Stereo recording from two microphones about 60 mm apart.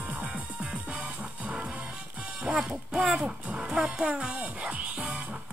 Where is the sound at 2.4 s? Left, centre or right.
Centre.